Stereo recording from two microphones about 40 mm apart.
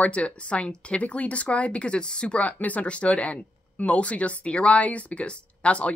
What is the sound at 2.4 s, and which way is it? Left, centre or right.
Speech, left.